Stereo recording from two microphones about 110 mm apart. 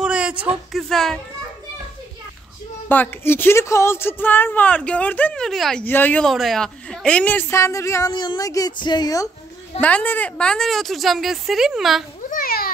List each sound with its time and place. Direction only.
0.0 s a sound: 10° right (ahead or behind)
0.7 s speech: 5° left (ahead or behind)
2.9 s speech: 20° left (ahead or behind)
5.4 s speech: 5° left (ahead or behind)
5.9 s speech: 15° left (ahead or behind)
6.2 s speech: centre (ahead or behind); by 8.1 s 30° left (ahead or behind)
8.1 s a woman's voice: 45° left (ahead or behind)
9.8 s speech: 15° left (ahead or behind); by 12.0 s 5° right (ahead or behind)